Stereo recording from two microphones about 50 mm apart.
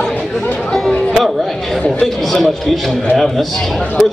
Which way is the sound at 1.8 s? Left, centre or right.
Left.